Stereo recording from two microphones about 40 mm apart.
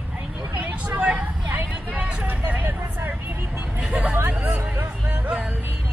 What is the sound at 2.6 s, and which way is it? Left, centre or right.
Vehicle, right.